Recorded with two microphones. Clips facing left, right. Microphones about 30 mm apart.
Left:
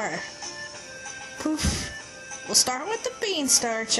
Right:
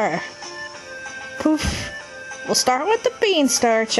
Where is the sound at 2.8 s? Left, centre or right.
Right.